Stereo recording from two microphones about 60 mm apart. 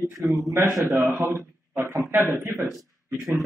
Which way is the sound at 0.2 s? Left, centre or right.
Right.